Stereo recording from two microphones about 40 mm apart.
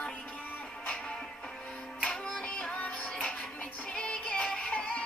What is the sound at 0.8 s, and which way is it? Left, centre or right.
Music, left.